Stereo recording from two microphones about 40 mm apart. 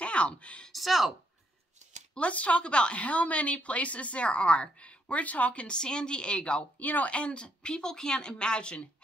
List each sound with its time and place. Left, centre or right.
0.0 s speech: left
0.7 s speech: centre
2.1 s a woman's voice: left
6.8 s speech: left
7.1 s speech: left